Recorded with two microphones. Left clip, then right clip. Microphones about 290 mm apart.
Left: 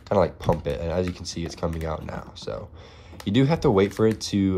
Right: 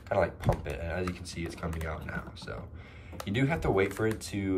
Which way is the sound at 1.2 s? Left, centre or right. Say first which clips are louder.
Left 8 dB; centre.